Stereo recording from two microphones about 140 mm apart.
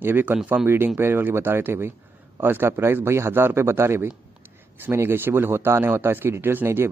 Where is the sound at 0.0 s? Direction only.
15° right (ahead or behind).